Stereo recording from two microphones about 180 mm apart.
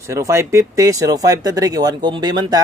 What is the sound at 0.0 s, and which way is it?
Speech, 15° right (ahead or behind).